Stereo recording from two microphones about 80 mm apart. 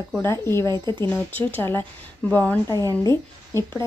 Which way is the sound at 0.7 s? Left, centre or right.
Right.